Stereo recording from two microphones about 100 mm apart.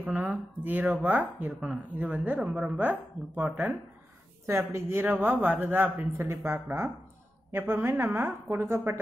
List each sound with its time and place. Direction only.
0.0 s a woman's voice: 15° right (ahead or behind)
4.5 s a woman's voice: 25° right (ahead or behind)